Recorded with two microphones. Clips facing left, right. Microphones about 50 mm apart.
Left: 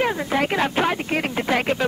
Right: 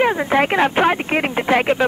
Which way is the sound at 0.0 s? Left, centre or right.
Right.